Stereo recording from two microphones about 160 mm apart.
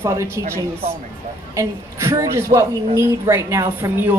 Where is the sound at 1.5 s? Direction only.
20° right (ahead or behind).